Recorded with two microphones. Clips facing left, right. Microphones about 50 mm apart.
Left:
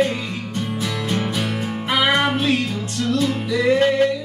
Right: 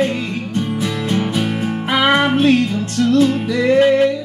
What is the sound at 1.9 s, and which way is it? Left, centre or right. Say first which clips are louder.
Music: right 3 dB; right.